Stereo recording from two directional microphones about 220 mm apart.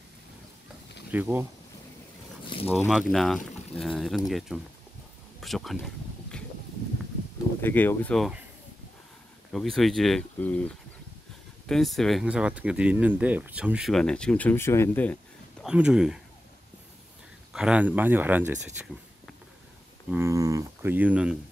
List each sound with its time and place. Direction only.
1.1 s speech: 10° right (ahead or behind)
2.4 s a sound: 25° left (ahead or behind)
2.9 s speech: centre (ahead or behind)
7.6 s speech: 10° left (ahead or behind)
9.5 s speech: centre (ahead or behind)
11.6 s speech: centre (ahead or behind)
15.6 s speech: 5° right (ahead or behind)
17.5 s speech: 5° right (ahead or behind)
20.1 s speech: 10° right (ahead or behind)